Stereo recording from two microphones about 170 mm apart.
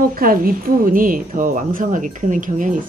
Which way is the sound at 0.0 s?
55° right (ahead or behind).